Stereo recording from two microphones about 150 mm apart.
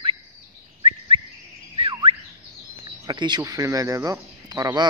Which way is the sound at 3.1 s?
30° right (ahead or behind).